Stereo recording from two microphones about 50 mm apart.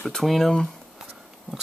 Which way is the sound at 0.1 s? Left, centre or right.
Centre.